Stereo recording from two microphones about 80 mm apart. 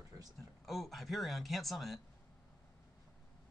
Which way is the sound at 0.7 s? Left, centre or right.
Centre.